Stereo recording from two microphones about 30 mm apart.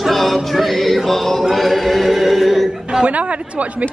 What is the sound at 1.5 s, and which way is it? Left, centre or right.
Chant, centre.